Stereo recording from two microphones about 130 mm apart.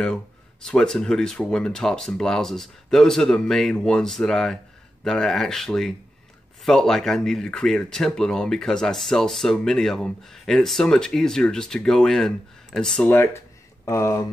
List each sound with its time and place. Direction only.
0.0 s speech: 5° left (ahead or behind)
13.1 s speech: 20° left (ahead or behind)